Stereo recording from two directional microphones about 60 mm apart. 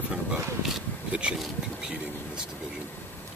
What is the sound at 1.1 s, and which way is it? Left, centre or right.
Bee, centre.